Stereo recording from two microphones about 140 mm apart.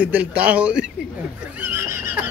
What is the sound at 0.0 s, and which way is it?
Speech, 10° right (ahead or behind).